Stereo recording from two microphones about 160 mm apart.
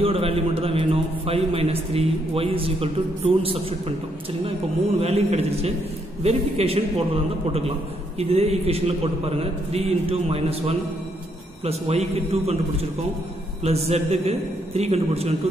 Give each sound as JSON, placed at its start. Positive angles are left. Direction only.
{"t": 0.0, "sound": "a man's voice", "side_deg": -35}
{"t": 5.0, "sound": "a man's voice", "side_deg": -40}
{"t": 8.2, "sound": "a man's voice", "side_deg": -40}
{"t": 13.6, "sound": "a man's voice", "side_deg": -40}